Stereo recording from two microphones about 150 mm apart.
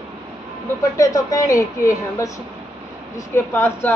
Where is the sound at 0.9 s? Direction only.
25° left (ahead or behind).